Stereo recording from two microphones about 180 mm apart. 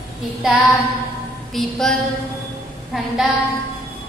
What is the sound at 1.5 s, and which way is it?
Speech, centre (ahead or behind).